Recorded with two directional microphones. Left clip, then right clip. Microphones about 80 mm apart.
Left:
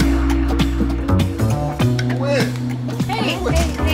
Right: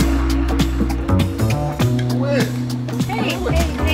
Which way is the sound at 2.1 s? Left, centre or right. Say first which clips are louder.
Left 1 dB; left.